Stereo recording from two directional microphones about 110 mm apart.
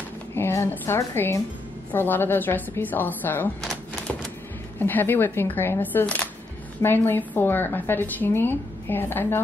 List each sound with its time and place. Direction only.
0.3 s a woman's voice: 25° left (ahead or behind)
4.7 s a woman's voice: 20° left (ahead or behind)